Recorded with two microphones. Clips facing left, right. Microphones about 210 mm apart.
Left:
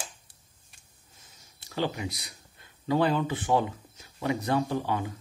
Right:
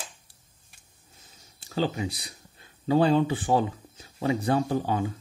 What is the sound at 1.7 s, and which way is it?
Speech, 30° right (ahead or behind).